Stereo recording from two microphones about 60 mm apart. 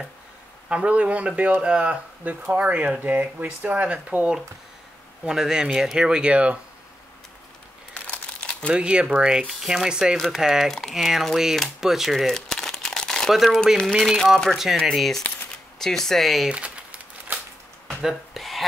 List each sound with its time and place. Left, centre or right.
0.7 s speech: centre
5.2 s speech: centre
7.9 s crumpling: left
8.6 s speech: centre
9.5 s speech: centre
10.1 s speech: centre
10.4 s speech: centre
11.8 s crumpling: centre
13.3 s speech: centre
16.4 s a sound: right
17.8 s a sound: centre